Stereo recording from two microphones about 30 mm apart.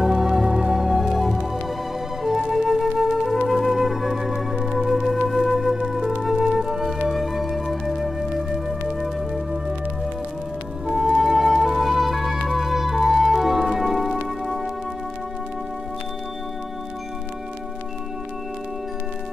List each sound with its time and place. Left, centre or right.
0.0 s music: centre
1.1 s music: centre
2.8 s music: centre
10.9 s music: centre